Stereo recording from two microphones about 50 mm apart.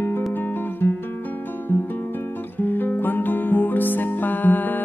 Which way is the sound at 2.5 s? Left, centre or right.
Left.